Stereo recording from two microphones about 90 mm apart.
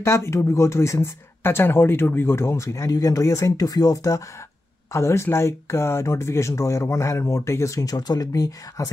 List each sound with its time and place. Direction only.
0.0 s speech: 30° left (ahead or behind)